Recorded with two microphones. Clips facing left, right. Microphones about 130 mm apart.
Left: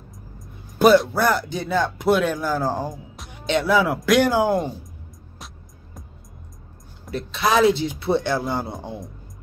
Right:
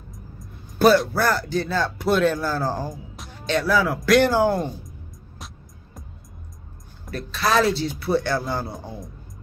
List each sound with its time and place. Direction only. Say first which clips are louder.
1.1 s speech: left 1 dB; 15° left (ahead or behind)
7.1 s speech: left 2 dB; 20° left (ahead or behind)